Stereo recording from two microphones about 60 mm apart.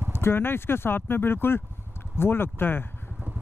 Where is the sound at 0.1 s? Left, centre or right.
Left.